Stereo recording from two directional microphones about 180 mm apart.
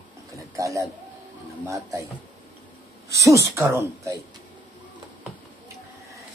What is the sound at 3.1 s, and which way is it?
A woman's voice, 15° right (ahead or behind).